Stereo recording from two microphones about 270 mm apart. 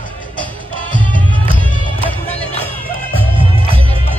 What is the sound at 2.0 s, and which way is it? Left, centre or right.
Music, centre.